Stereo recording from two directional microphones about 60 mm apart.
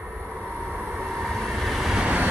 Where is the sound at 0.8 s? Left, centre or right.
Centre.